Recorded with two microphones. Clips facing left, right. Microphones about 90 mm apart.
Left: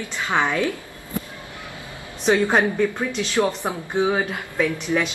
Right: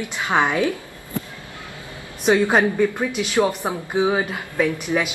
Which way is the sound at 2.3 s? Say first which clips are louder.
Right 1 dB; 10° right (ahead or behind).